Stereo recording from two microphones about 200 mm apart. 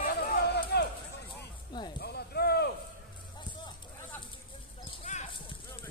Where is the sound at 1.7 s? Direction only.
20° left (ahead or behind).